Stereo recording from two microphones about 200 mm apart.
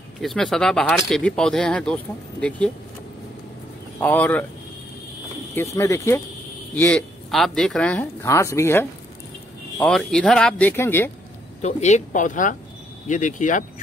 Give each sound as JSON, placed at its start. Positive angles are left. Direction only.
{"t": 0.2, "sound": "speech", "side_deg": 0}
{"t": 4.0, "sound": "speech", "side_deg": 10}
{"t": 5.8, "sound": "speech", "side_deg": 15}
{"t": 11.6, "sound": "speech", "side_deg": 35}